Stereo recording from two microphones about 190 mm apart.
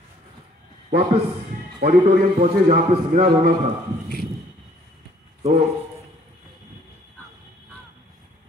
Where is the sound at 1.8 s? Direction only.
40° right (ahead or behind).